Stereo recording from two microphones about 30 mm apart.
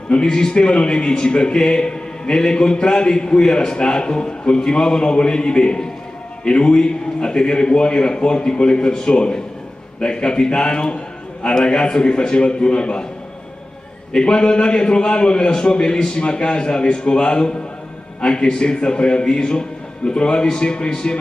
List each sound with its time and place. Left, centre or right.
0.3 s a man's voice: left
1.0 s a man's voice: centre
1.3 s a man's voice: left
14.1 s a man's voice: left
16.2 s a man's voice: left